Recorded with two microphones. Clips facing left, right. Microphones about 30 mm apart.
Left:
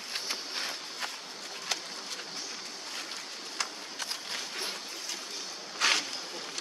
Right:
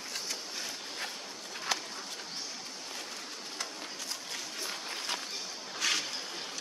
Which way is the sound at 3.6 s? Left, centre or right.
Left.